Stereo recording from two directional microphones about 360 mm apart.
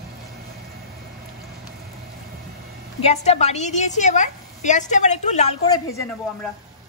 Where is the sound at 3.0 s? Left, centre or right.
Centre.